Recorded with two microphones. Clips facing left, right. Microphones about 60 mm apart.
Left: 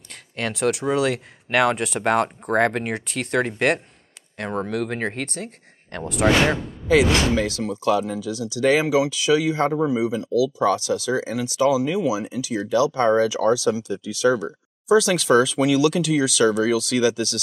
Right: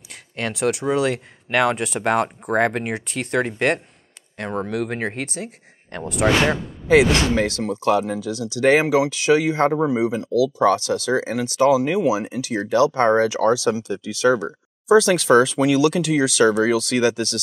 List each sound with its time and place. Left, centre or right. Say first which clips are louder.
0.1 s speech: even; centre
6.9 s speech: right 2 dB; right